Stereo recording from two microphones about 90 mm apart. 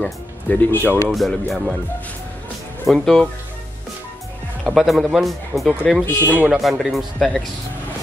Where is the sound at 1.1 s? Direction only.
Centre (ahead or behind).